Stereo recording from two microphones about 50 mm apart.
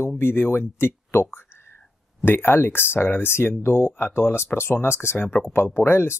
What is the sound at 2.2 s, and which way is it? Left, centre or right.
Speech, left.